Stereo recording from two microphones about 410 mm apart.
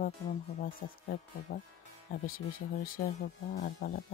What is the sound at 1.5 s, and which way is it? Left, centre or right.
Speech, left.